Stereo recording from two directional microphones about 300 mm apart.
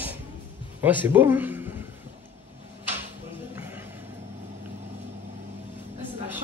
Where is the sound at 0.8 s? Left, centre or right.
Centre.